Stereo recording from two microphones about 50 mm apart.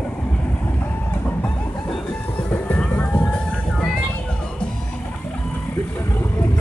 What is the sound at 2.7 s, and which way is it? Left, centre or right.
Music, left.